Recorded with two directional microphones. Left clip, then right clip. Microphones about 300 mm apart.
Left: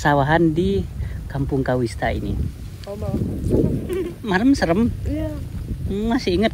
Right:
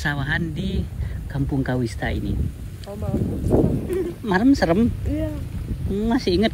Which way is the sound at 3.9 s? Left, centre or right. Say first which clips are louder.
Even; centre.